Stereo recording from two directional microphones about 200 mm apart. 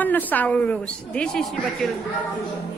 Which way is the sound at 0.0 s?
10° left (ahead or behind).